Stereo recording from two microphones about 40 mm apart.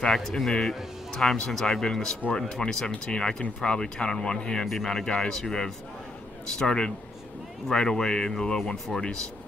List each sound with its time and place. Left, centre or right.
0.0 s speech: centre